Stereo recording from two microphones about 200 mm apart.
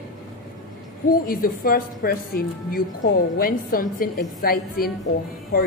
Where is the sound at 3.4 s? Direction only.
45° left (ahead or behind).